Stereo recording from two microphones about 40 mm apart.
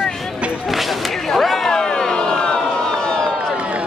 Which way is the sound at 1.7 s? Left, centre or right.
Centre.